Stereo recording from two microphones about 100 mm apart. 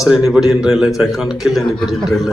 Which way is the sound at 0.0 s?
5° right (ahead or behind).